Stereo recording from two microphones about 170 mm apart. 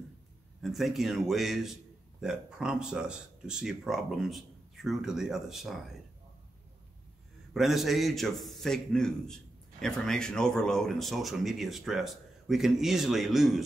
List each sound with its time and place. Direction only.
0.6 s a man's voice: centre (ahead or behind)
7.5 s a man's voice: centre (ahead or behind)